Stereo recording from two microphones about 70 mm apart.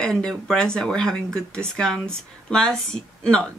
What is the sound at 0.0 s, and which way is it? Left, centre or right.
Speech, centre.